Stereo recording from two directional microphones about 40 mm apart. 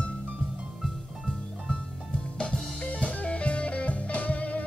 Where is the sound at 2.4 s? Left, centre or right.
Centre.